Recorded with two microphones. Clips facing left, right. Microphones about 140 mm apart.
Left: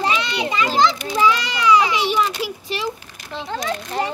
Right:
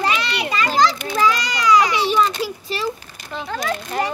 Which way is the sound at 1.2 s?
40° right (ahead or behind).